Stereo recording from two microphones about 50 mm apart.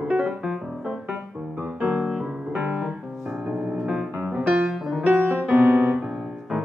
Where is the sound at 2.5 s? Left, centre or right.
Right.